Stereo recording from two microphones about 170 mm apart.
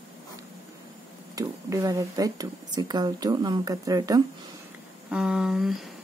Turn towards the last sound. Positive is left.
turn(degrees=0)  # may be behind; listen again after turning